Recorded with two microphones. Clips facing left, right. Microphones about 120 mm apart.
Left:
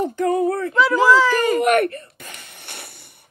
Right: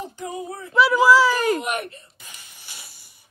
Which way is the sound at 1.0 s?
10° right (ahead or behind).